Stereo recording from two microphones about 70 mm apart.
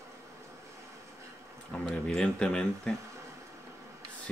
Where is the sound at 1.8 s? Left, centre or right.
Centre.